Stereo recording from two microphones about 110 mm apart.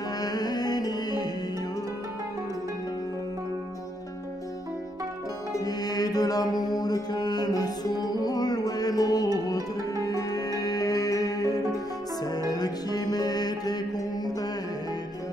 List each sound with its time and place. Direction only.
0.2 s music: 35° left (ahead or behind)
5.7 s mantra: 35° left (ahead or behind)
9.5 s music: 35° left (ahead or behind)